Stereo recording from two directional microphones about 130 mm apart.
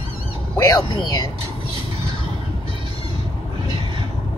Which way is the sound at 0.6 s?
30° left (ahead or behind).